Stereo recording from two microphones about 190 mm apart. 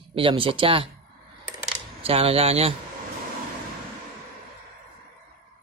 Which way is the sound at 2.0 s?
30° right (ahead or behind).